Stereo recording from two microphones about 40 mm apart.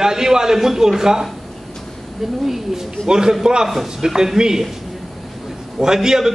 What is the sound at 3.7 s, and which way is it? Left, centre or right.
Speech, centre.